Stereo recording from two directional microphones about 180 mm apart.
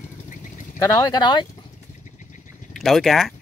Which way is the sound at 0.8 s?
20° left (ahead or behind).